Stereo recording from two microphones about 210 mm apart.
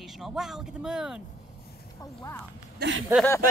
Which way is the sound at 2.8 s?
60° right (ahead or behind).